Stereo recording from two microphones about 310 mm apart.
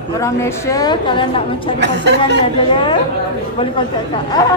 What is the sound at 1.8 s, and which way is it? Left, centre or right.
Speech, right.